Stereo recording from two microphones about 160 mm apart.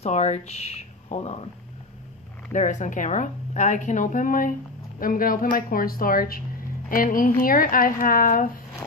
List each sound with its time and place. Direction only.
0.0 s speech: 45° left (ahead or behind)
2.5 s a woman's voice: 50° left (ahead or behind)